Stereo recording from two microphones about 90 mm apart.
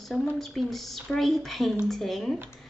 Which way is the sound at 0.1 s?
Centre (ahead or behind).